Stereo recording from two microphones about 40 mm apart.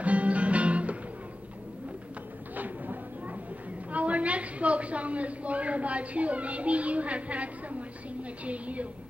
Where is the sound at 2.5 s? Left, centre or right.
Right.